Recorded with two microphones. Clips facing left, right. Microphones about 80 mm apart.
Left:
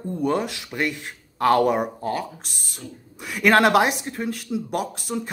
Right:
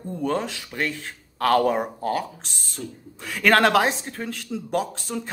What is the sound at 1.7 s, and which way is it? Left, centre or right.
Speech, centre.